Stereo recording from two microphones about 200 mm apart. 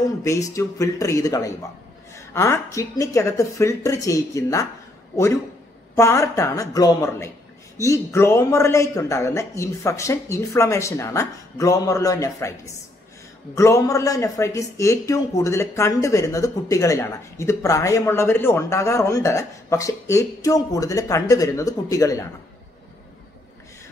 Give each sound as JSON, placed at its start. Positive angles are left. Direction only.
{"t": 0.2, "sound": "a man's voice", "side_deg": 15}